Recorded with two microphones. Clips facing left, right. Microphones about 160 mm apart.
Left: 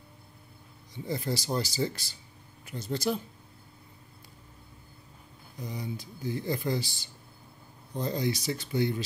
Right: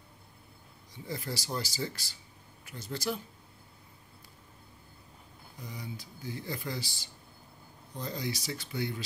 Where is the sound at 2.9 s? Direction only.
20° left (ahead or behind).